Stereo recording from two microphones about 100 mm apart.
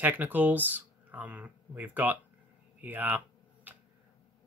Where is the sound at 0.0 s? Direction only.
15° right (ahead or behind).